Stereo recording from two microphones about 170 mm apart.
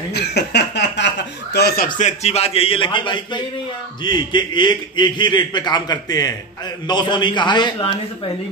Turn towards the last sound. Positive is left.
turn(degrees=25)  # may be behind; listen again after turning